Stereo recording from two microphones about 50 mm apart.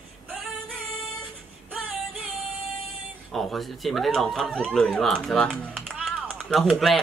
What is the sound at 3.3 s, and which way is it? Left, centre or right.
Speech, centre.